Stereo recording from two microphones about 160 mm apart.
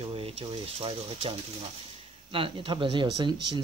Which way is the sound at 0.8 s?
35° right (ahead or behind).